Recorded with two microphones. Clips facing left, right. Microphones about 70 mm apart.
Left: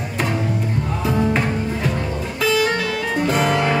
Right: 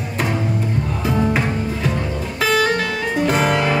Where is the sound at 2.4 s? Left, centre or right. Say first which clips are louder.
Right 1 dB; right.